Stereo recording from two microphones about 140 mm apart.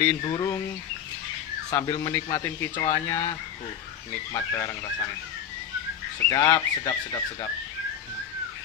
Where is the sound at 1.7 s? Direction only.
25° left (ahead or behind).